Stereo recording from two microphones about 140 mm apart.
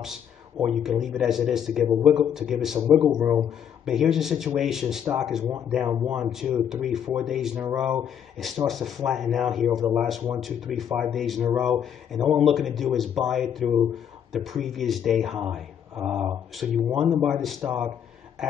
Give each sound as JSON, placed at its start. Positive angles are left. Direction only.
{"t": 0.0, "sound": "speech", "side_deg": -5}
{"t": 3.2, "sound": "a man's voice", "side_deg": -20}
{"t": 3.4, "sound": "speech", "side_deg": -5}